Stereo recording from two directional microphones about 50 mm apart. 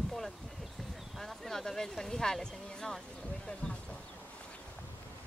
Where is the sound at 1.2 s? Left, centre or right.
Centre.